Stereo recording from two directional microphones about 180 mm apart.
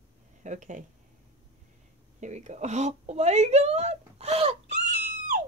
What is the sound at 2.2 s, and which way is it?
Speech, 40° right (ahead or behind).